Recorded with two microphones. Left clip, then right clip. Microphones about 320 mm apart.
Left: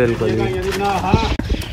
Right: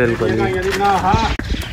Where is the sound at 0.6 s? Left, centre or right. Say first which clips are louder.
Right 3 dB; left.